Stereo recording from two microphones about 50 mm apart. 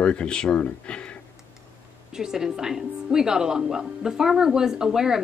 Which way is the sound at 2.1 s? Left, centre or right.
Centre.